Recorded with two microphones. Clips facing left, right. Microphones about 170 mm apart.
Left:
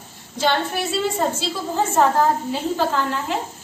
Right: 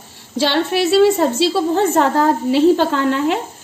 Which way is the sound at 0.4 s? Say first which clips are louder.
Right 5 dB; 85° right.